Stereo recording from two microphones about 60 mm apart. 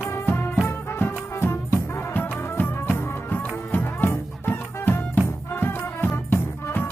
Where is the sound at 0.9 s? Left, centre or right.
Left.